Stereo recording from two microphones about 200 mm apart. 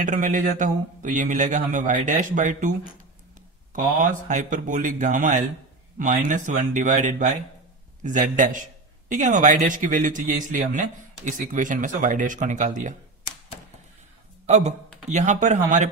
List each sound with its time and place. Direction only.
0.0 s a man's voice: 40° right (ahead or behind)
3.7 s a man's voice: 40° right (ahead or behind)
14.4 s a man's voice: 35° right (ahead or behind)